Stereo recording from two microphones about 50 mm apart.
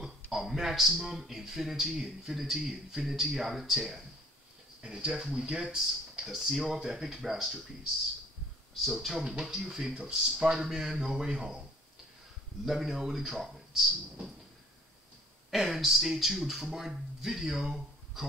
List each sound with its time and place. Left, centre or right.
0.0 s speech: centre
6.2 s speech: centre
8.8 s speech: centre
12.6 s speech: centre
15.5 s speech: centre